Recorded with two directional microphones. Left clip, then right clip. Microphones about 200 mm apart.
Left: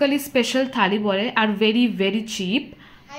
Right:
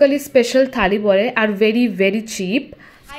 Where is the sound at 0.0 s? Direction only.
15° right (ahead or behind).